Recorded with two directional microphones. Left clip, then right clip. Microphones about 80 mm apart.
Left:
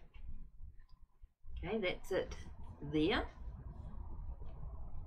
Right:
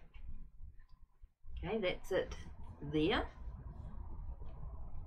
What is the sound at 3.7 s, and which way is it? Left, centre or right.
Vehicle, left.